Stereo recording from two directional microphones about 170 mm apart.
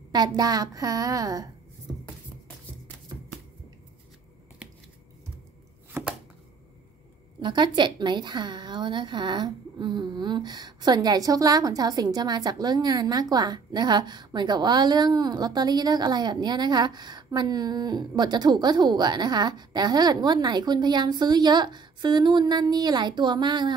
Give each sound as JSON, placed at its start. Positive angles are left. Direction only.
{"t": 0.1, "sound": "a woman's voice", "side_deg": -20}
{"t": 7.3, "sound": "a woman's voice", "side_deg": -25}